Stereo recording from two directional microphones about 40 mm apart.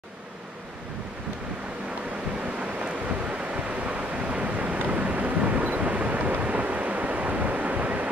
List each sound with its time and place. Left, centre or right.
2.4 s waves: right